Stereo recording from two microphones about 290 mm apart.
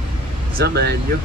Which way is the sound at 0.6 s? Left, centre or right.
Right.